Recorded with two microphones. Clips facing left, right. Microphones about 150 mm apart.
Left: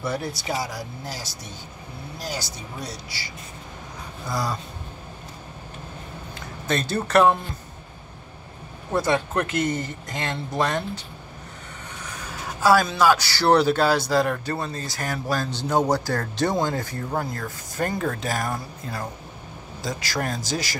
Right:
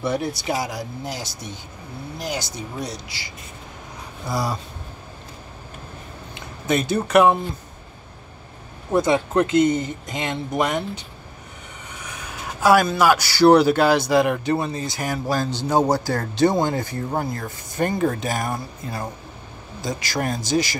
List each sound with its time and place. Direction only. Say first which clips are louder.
0.5 s a man's voice: right 2 dB; 20° right (ahead or behind)
4.3 s speech: right 2 dB; 25° right (ahead or behind)
6.7 s a man's voice: right 3 dB; 10° right (ahead or behind)
8.9 s speech: right 4 dB; 20° right (ahead or behind)
12.6 s a man's voice: right 2 dB; 15° right (ahead or behind)